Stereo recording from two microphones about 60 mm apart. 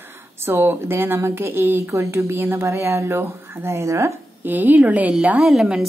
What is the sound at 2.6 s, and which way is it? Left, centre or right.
Speech, right.